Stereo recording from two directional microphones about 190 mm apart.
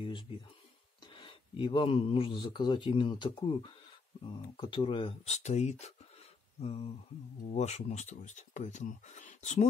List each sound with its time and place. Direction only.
1.1 s a man's voice: 25° left (ahead or behind)